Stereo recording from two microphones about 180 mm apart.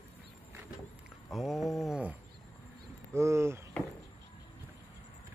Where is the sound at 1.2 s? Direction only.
Centre (ahead or behind).